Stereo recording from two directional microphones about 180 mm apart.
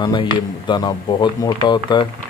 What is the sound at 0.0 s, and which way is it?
Speech, 25° left (ahead or behind).